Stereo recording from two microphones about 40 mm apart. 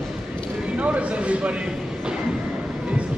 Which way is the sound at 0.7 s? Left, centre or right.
Right.